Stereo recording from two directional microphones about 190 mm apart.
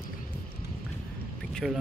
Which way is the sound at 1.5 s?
Centre (ahead or behind).